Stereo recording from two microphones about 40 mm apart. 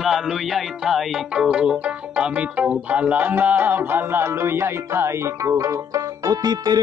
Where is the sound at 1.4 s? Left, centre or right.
Right.